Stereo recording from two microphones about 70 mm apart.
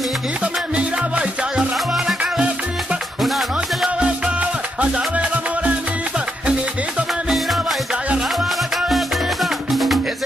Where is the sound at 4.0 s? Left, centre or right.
Centre.